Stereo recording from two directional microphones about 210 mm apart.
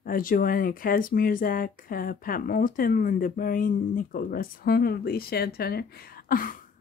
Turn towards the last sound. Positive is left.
turn(degrees=40)  # may be behind; listen again after turning